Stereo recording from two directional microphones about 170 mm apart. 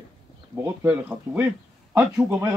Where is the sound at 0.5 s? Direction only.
10° right (ahead or behind).